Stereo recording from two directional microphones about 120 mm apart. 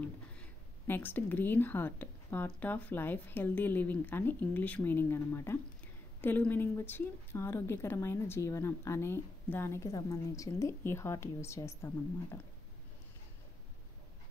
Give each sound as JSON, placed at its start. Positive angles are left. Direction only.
{"t": 0.0, "sound": "speech", "side_deg": 15}